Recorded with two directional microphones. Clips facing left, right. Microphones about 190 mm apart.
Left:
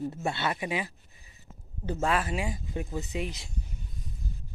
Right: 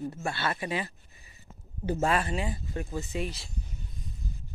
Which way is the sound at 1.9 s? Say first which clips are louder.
Right 1 dB; centre (ahead or behind).